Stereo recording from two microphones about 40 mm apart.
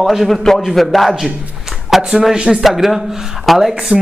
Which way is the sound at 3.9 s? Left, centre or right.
Centre.